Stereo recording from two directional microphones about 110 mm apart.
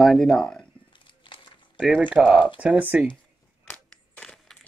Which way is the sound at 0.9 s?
50° left (ahead or behind).